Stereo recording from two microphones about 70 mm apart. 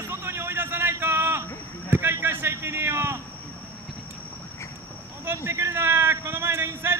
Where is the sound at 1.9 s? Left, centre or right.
Right.